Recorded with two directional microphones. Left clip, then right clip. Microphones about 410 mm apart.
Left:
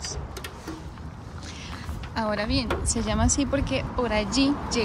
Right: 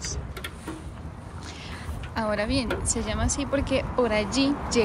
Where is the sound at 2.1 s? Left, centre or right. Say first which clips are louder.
Even; centre.